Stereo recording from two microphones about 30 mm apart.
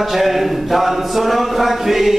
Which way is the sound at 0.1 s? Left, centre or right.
Centre.